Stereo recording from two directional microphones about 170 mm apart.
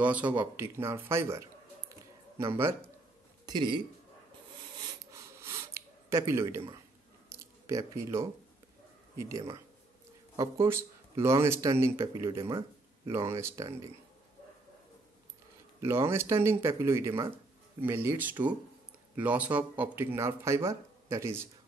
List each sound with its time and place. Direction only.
0.0 s a man's voice: 10° right (ahead or behind)
3.4 s speech: 25° right (ahead or behind)
5.4 s a sound: 15° right (ahead or behind)
9.1 s speech: 15° right (ahead or behind)
12.4 s a sound: 30° right (ahead or behind)
13.1 s speech: 15° right (ahead or behind)
15.8 s speech: 15° right (ahead or behind)